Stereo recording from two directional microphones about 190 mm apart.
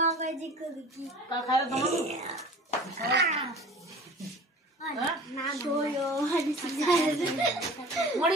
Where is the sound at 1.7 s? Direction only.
35° right (ahead or behind).